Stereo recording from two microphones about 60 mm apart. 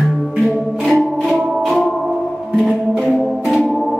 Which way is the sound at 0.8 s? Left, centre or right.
Centre.